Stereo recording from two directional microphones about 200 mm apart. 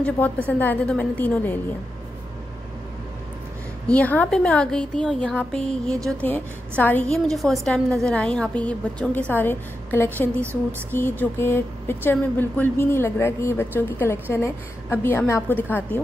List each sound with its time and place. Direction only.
0.0 s speech: 10° left (ahead or behind)
3.9 s a woman's voice: 10° left (ahead or behind)